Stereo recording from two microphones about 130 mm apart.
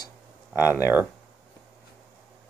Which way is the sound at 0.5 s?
15° right (ahead or behind).